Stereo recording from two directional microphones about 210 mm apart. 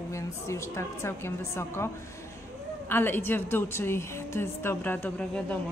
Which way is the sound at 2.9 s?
10° left (ahead or behind).